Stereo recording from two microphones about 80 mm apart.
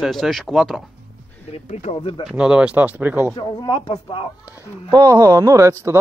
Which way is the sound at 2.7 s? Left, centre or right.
Right.